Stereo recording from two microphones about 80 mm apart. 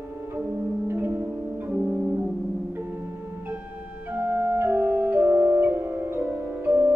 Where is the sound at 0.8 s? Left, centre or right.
Right.